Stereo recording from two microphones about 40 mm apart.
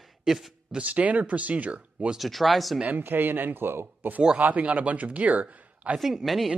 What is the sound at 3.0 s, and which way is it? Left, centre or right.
Speech, right.